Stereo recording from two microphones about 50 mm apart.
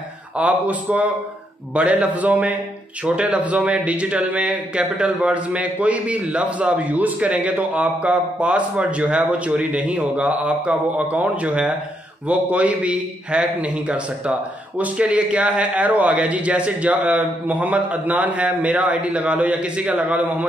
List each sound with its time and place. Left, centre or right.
0.4 s a man's voice: right